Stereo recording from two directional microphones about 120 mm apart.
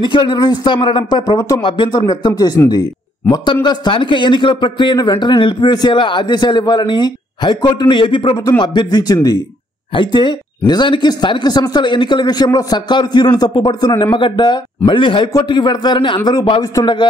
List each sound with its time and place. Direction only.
0.0 s a man's voice: 40° left (ahead or behind)
3.6 s a man's voice: 40° left (ahead or behind)
9.9 s a man's voice: 45° left (ahead or behind)